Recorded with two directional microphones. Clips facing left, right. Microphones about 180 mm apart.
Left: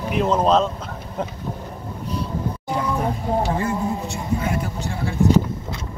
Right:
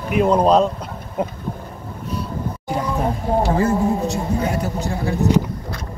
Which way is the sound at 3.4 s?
35° right (ahead or behind).